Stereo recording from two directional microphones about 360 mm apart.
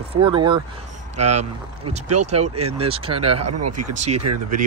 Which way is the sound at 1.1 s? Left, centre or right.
Right.